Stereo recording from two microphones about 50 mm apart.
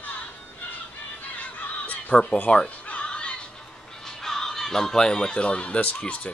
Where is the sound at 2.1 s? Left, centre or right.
Centre.